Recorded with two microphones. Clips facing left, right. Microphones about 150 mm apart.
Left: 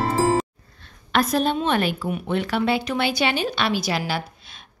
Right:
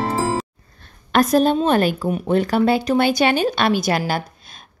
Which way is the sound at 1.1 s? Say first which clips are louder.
Right 5 dB; 45° right (ahead or behind).